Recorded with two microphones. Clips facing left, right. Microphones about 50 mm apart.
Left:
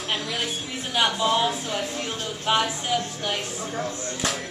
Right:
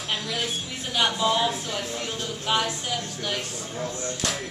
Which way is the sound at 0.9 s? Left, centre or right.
Centre.